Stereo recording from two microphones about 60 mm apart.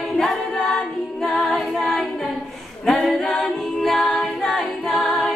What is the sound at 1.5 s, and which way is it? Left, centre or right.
A capella, centre.